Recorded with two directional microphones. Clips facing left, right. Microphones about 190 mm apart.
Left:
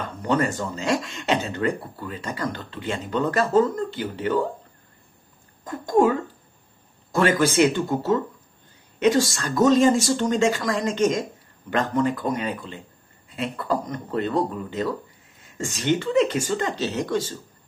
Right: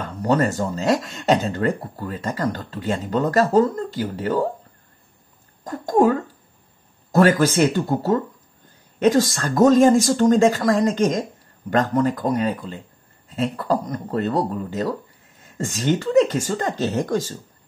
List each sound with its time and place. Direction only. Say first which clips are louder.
0.2 s speech: right 4 dB; 40° right (ahead or behind)
5.6 s speech: right 2 dB; 40° right (ahead or behind)
7.2 s speech: right 3 dB; 40° right (ahead or behind)